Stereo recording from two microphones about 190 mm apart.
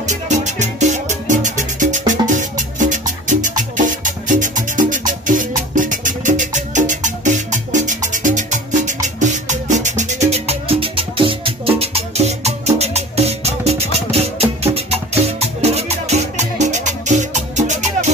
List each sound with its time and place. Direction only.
0.0 s music: 40° right (ahead or behind)